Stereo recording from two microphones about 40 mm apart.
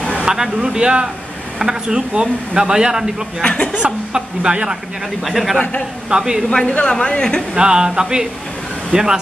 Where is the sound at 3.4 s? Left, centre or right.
Left.